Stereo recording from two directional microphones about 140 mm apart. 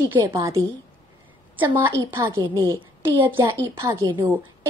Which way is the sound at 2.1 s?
20° right (ahead or behind).